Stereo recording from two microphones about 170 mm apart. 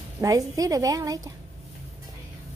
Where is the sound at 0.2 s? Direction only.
20° right (ahead or behind).